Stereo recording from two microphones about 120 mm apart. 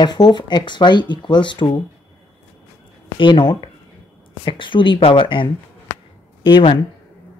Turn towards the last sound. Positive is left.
turn(degrees=40)  # may be behind; listen again after turning